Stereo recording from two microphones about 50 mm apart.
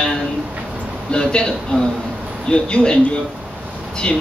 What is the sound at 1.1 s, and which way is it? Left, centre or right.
Speech, centre.